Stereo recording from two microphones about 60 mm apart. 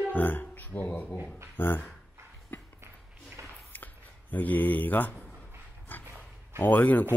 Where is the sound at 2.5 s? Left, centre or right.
Left.